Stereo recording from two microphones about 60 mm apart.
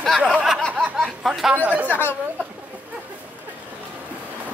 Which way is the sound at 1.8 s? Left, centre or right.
Left.